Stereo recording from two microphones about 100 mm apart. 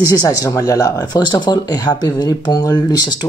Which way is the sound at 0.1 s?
35° left (ahead or behind).